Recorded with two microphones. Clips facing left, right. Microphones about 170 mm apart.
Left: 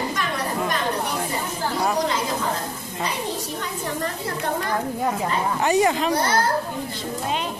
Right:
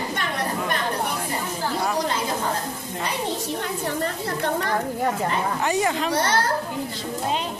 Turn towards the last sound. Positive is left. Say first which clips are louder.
# left 3 dB
turn(degrees=20)  # may be behind; listen again after turning